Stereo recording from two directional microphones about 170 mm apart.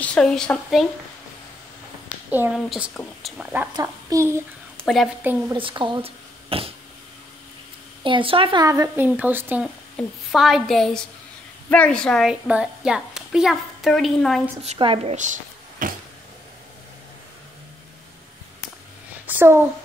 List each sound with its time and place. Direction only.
0.0 s a woman's voice: 5° left (ahead or behind)
2.5 s a woman's voice: centre (ahead or behind)
3.7 s a child's voice: 20° right (ahead or behind)
4.8 s a woman's voice: centre (ahead or behind)
5.5 s a child's voice: 30° right (ahead or behind)
6.0 s a sound: 35° right (ahead or behind)
8.0 s a child's voice: 30° right (ahead or behind)
8.6 s a woman's voice: 20° right (ahead or behind)
9.9 s a woman's voice: centre (ahead or behind)
14.6 s a woman's voice: 35° right (ahead or behind)
15.8 s a sound: 55° right (ahead or behind)
19.2 s a sound: 10° right (ahead or behind)